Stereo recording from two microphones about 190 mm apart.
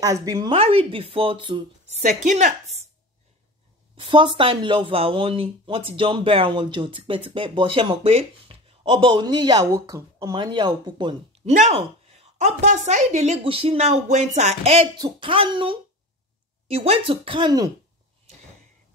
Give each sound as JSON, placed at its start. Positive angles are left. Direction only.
{"t": 0.0, "sound": "speech", "side_deg": -20}
{"t": 0.6, "sound": "speech", "side_deg": -30}
{"t": 2.2, "sound": "a woman's voice", "side_deg": -40}
{"t": 3.9, "sound": "speech", "side_deg": -25}
{"t": 11.5, "sound": "a woman's voice", "side_deg": -35}
{"t": 15.0, "sound": "speech", "side_deg": -25}